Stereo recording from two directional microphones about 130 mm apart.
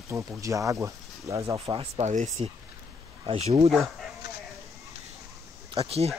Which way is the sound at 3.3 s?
50° right (ahead or behind).